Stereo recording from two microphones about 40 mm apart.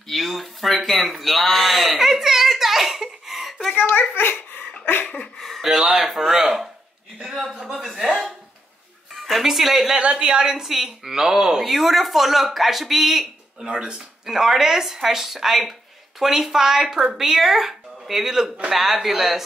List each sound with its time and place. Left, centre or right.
0.1 s speech: centre
3.7 s a child's voice: left
4.1 s speech: left
5.0 s a sound: left
5.4 s a man's voice: centre
7.8 s speech: centre
9.9 s speech: right; by 13.7 s centre
13.7 s speech: right
14.2 s speech: centre